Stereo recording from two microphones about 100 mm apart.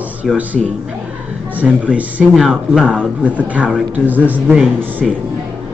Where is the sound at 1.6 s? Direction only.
15° right (ahead or behind).